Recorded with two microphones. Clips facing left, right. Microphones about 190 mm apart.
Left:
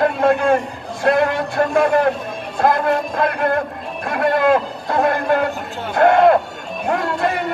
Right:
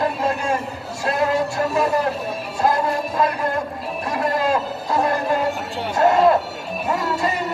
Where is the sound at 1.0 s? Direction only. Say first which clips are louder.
Left 4 dB; 60° left (ahead or behind).